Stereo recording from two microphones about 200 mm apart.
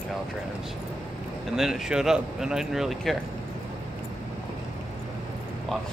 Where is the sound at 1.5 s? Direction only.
Centre (ahead or behind).